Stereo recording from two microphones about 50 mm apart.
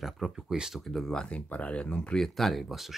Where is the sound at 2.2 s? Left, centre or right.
Centre.